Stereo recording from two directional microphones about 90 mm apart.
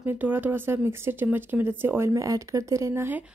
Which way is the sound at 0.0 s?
20° right (ahead or behind).